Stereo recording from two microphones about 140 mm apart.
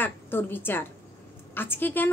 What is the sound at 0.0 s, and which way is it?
Speech, 15° left (ahead or behind).